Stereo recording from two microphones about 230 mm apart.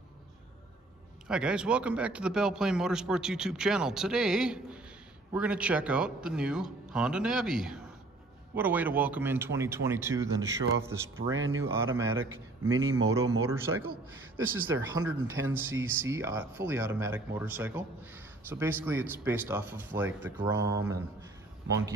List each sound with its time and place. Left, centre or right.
1.2 s a man's voice: centre
11.3 s speech: right
11.6 s speech: centre
13.5 s speech: centre